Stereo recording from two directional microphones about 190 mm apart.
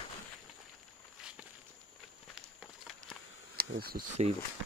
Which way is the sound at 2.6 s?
Centre (ahead or behind).